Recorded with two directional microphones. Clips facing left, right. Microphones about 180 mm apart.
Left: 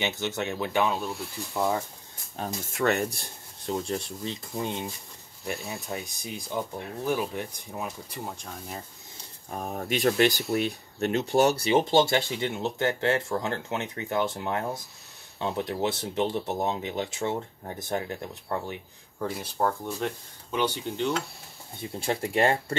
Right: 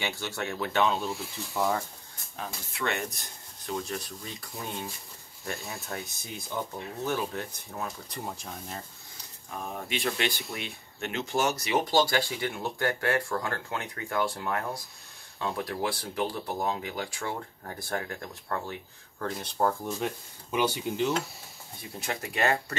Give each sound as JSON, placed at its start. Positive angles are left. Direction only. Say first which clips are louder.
{"t": 0.0, "sound": "speech", "louder": "left 4 dB", "side_deg": 20}
{"t": 0.9, "sound": "speech", "louder": "even", "side_deg": 0}
{"t": 2.3, "sound": "speech", "louder": "left 6 dB", "side_deg": 40}
{"t": 8.2, "sound": "speech", "louder": "even", "side_deg": 0}
{"t": 9.6, "sound": "speech", "louder": "left 5 dB", "side_deg": 45}
{"t": 19.2, "sound": "speech", "louder": "even", "side_deg": 5}
{"t": 20.0, "sound": "speech", "louder": "left 1 dB", "side_deg": -5}
{"t": 22.0, "sound": "speech", "louder": "left 4 dB", "side_deg": 30}